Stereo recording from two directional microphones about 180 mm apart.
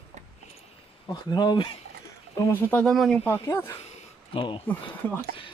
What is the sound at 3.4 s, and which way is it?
Speech, 15° left (ahead or behind).